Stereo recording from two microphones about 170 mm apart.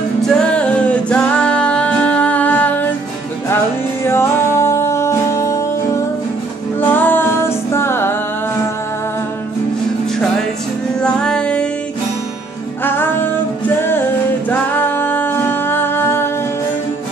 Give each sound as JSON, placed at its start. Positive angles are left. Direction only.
{"t": 0.3, "sound": "music", "side_deg": 5}
{"t": 4.0, "sound": "music", "side_deg": 15}
{"t": 6.8, "sound": "music", "side_deg": 10}
{"t": 11.0, "sound": "music", "side_deg": 5}
{"t": 12.8, "sound": "music", "side_deg": 10}
{"t": 14.5, "sound": "music", "side_deg": 10}